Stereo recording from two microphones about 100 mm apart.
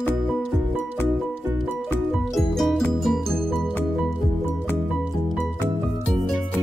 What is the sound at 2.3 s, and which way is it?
Music, 5° left (ahead or behind).